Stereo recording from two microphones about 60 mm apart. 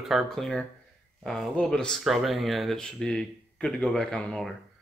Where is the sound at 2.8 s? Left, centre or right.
Centre.